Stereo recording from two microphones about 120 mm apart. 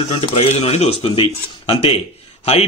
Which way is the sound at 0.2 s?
60° left (ahead or behind).